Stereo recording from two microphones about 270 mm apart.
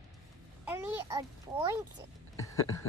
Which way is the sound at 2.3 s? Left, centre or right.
Centre.